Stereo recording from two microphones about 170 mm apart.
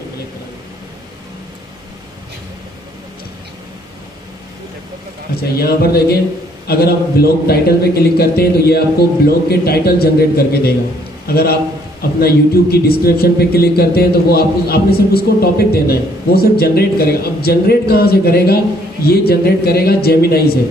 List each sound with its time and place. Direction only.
5.5 s a man's voice: 65° left (ahead or behind)